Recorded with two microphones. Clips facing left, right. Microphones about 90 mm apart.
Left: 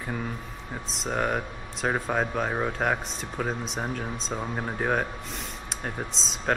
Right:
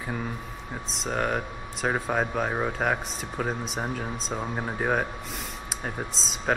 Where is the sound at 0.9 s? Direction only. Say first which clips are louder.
Even; centre (ahead or behind).